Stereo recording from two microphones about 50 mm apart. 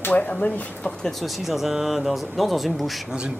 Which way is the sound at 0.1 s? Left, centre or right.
Left.